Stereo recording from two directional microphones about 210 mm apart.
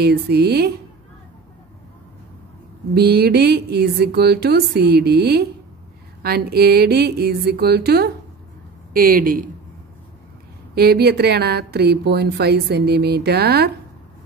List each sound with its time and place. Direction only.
0.0 s a woman's voice: 50° right (ahead or behind)
2.9 s a woman's voice: 50° right (ahead or behind)
10.7 s a woman's voice: 45° right (ahead or behind)